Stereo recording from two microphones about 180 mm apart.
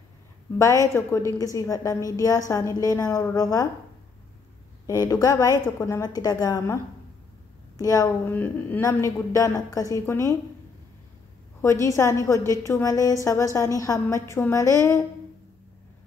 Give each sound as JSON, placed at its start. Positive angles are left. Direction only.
{"t": 0.6, "sound": "a woman's voice", "side_deg": 15}
{"t": 4.8, "sound": "a woman's voice", "side_deg": 20}
{"t": 11.6, "sound": "a woman's voice", "side_deg": 15}